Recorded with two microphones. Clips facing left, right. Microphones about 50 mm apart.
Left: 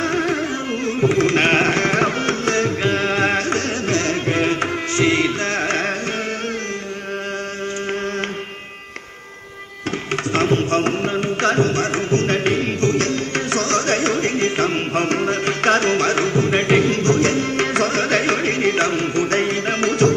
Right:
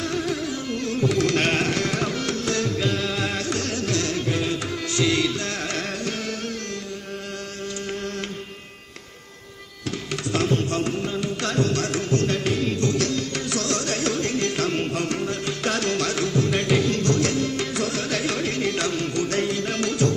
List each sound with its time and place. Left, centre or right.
0.0 s carnatic music: left
10.3 s music: left